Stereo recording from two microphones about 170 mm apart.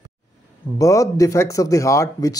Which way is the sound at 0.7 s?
20° left (ahead or behind).